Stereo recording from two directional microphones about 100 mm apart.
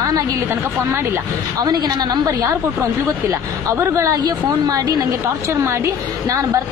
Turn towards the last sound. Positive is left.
turn(degrees=-30)  # may be behind; listen again after turning